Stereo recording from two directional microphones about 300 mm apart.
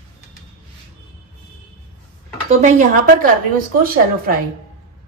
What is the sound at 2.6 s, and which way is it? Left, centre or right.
A woman's voice, right.